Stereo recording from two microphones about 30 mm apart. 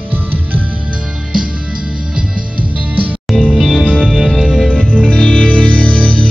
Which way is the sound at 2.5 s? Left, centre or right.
Right.